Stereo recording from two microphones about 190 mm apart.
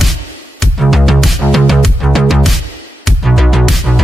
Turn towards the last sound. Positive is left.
turn(degrees=0)  # may be behind; listen again after turning